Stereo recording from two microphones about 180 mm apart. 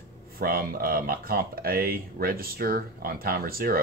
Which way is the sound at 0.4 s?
55° right (ahead or behind).